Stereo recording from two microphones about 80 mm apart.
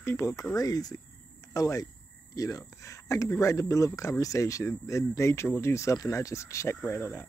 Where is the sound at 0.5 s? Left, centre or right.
Left.